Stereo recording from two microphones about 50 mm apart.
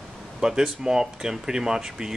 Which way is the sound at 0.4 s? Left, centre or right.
Centre.